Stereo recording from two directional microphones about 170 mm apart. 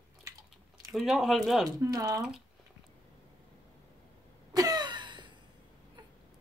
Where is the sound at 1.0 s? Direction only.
Centre (ahead or behind).